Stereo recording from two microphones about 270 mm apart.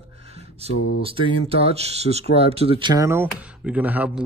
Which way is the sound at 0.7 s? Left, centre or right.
Left.